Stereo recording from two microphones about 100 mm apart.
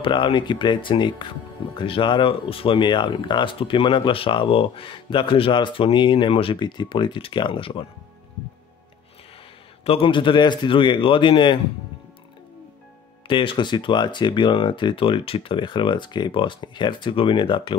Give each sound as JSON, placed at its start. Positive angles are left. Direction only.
{"t": 0.0, "sound": "speech", "side_deg": 55}
{"t": 9.8, "sound": "speech", "side_deg": 65}
{"t": 13.3, "sound": "speech", "side_deg": 55}